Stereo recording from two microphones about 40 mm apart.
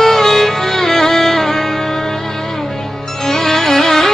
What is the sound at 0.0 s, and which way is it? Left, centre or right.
Music, centre.